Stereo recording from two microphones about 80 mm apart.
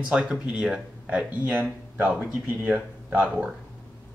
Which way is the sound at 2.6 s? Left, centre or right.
Centre.